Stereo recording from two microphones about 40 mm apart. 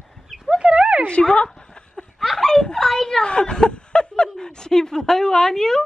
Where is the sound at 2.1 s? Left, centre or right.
Centre.